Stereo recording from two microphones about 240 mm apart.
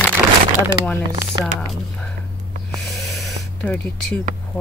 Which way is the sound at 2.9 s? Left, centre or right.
Centre.